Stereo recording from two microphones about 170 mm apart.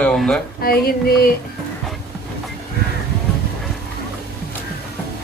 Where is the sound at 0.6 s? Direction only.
60° left (ahead or behind).